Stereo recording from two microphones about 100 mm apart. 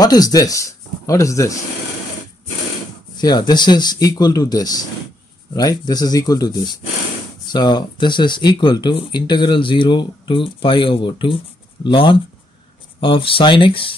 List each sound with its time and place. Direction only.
0.0 s speech: 40° left (ahead or behind)
3.2 s speech: 45° left (ahead or behind); by 13.9 s 60° left (ahead or behind)